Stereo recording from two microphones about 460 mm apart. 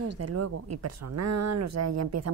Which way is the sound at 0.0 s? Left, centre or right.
Right.